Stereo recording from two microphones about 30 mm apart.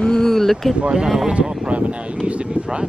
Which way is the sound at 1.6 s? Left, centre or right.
Right.